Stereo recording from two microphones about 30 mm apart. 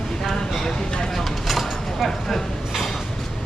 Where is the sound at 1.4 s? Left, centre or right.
Centre.